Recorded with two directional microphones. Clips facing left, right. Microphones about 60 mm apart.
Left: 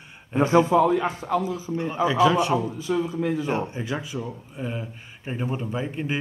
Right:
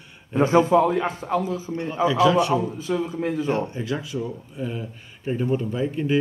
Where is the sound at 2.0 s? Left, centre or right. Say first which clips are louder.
Right 2 dB; left.